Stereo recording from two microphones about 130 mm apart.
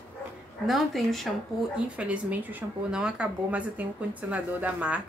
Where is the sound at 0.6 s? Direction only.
Centre (ahead or behind).